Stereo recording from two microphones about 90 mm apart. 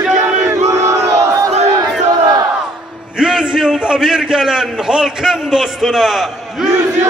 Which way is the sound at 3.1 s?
10° right (ahead or behind).